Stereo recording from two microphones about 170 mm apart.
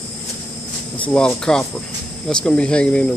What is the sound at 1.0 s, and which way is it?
Speech, 5° left (ahead or behind).